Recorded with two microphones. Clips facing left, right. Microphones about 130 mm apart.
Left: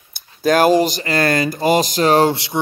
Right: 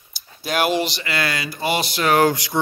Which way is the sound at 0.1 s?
45° left (ahead or behind).